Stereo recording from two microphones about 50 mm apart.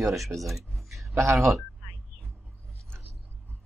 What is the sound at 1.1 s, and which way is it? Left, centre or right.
Speech, right.